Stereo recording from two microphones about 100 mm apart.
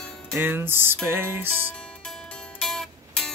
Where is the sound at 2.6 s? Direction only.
5° left (ahead or behind).